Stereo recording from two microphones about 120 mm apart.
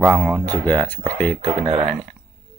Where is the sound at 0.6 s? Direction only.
10° left (ahead or behind).